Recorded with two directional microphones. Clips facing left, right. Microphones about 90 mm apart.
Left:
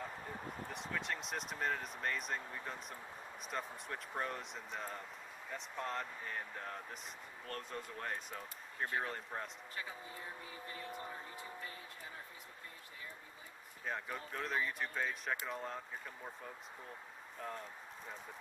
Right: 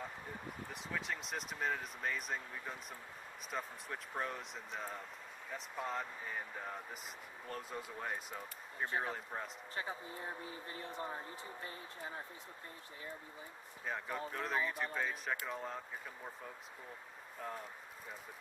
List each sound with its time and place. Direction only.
0.7 s speech: centre (ahead or behind)
9.8 s speech: 30° right (ahead or behind)
13.8 s speech: centre (ahead or behind)
17.4 s speech: 5° right (ahead or behind)